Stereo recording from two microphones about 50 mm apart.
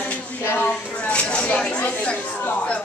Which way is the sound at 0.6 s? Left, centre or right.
Left.